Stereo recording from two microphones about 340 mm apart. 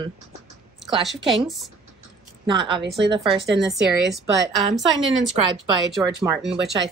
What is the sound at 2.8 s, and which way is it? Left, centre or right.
Speech, right.